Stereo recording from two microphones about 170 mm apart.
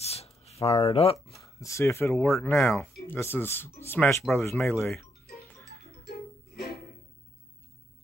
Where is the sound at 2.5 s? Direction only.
Centre (ahead or behind).